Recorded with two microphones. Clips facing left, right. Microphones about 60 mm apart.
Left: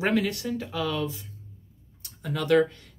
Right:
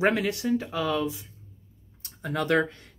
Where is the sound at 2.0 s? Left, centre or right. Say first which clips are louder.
Right 2 dB; right.